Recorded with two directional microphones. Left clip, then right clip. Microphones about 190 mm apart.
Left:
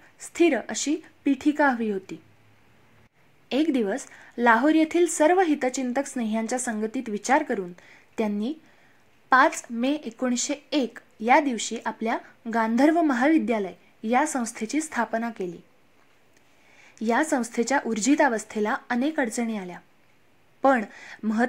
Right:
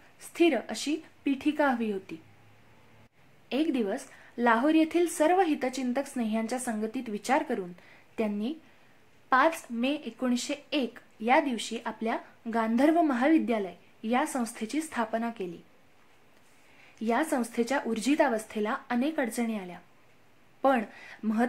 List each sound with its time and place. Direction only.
0.2 s speech: 30° left (ahead or behind)
3.4 s speech: 30° left (ahead or behind)
16.9 s speech: 30° left (ahead or behind)